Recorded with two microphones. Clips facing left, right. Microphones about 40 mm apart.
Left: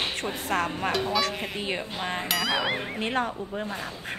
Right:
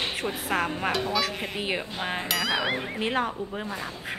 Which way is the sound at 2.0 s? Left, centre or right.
Centre.